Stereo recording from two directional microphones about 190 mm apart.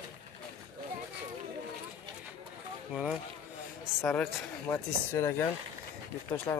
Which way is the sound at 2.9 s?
5° right (ahead or behind).